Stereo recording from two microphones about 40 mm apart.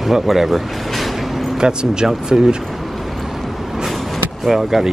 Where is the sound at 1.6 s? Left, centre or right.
Centre.